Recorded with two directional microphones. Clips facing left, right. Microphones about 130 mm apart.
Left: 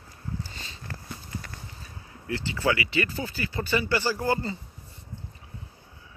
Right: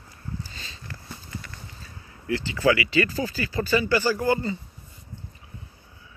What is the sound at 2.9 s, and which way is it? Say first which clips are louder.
Speech: right 5 dB; 90° right.